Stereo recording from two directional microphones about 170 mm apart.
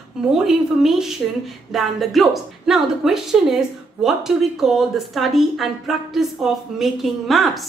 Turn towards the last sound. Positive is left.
turn(degrees=0)  # may be behind; listen again after turning